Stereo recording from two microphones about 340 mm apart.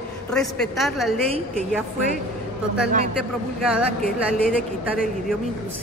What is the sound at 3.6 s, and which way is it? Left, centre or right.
Speech, centre.